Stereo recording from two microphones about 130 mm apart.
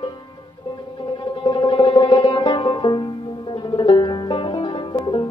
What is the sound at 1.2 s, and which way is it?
Music, 35° left (ahead or behind).